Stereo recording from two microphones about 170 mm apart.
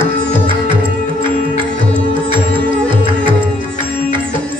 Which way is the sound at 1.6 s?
30° right (ahead or behind).